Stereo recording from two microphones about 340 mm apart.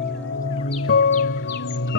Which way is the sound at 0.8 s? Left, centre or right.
Left.